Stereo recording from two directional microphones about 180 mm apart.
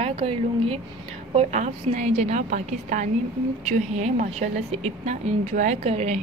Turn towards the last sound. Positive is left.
turn(degrees=-35)  # may be behind; listen again after turning